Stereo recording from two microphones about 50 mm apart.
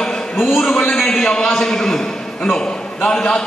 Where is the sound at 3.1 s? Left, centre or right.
Centre.